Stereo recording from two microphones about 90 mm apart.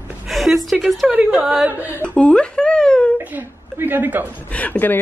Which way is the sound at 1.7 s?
20° right (ahead or behind).